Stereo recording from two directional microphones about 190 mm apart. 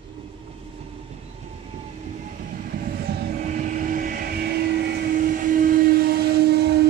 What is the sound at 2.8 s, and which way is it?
Vehicle, 55° right (ahead or behind).